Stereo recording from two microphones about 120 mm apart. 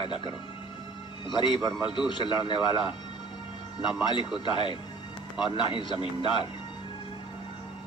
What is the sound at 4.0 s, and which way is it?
A man's voice, 40° left (ahead or behind).